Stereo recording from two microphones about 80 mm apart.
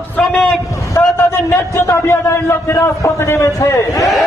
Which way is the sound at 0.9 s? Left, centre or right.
Left.